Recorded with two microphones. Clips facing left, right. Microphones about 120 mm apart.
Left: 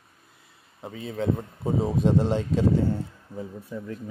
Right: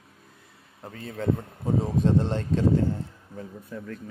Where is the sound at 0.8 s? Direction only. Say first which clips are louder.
Left 1 dB; 5° left (ahead or behind).